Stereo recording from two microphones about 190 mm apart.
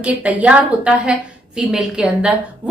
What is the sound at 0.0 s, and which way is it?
A woman's voice, 5° right (ahead or behind).